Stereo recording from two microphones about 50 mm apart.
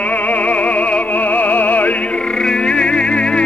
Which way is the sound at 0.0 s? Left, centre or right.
Left.